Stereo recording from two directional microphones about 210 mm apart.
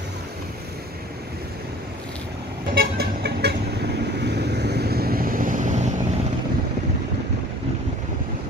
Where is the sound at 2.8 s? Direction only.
50° right (ahead or behind); by 6.0 s 35° right (ahead or behind).